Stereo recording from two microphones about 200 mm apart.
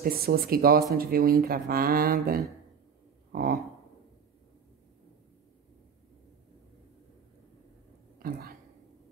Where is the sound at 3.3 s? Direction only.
45° right (ahead or behind).